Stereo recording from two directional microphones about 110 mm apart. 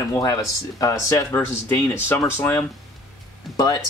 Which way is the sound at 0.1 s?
30° left (ahead or behind).